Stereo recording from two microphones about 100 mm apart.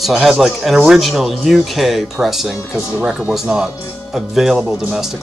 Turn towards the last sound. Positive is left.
turn(degrees=-5)  # may be behind; listen again after turning